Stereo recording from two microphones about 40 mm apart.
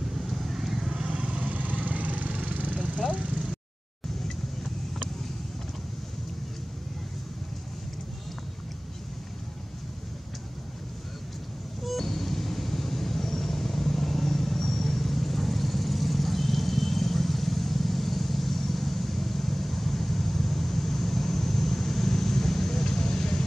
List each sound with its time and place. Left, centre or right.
0.1 s vehicle: centre
0.9 s vehicle: right
1.6 s vehicle: right
11.8 s vehicle: centre